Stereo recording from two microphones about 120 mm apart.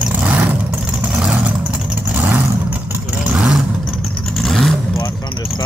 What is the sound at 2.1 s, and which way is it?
Vehicle, 15° right (ahead or behind).